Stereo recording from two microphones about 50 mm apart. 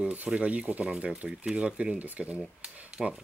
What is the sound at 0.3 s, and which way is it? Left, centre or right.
Speech, right.